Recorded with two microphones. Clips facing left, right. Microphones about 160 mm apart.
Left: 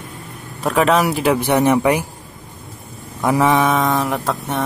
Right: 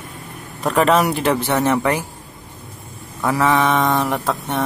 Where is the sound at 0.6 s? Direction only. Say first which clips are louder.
Even; centre (ahead or behind).